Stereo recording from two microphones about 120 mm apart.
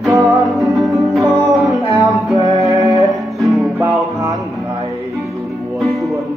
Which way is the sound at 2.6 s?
30° right (ahead or behind).